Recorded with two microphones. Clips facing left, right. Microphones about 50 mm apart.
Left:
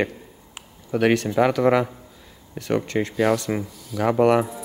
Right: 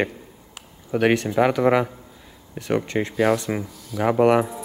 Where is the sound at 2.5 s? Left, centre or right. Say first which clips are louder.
Even; centre.